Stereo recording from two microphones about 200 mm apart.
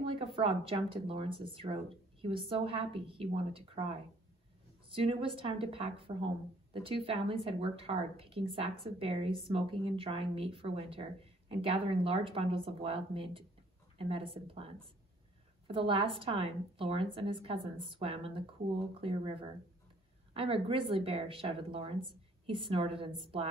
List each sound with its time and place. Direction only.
0.4 s speech: 25° right (ahead or behind)
4.8 s a woman's voice: 25° right (ahead or behind)